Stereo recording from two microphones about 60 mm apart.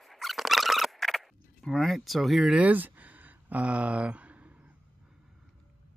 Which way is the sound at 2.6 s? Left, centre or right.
Right.